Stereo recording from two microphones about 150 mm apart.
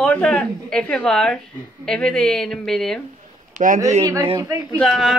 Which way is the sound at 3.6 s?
50° right (ahead or behind).